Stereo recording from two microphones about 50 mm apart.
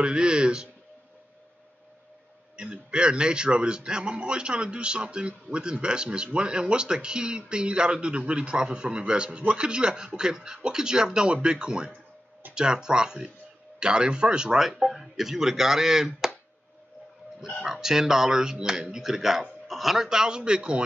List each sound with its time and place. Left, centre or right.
0.0 s a sound: centre
2.5 s a man's voice: centre
17.6 s speech: centre